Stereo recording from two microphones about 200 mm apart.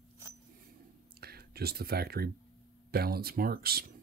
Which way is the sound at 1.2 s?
50° right (ahead or behind).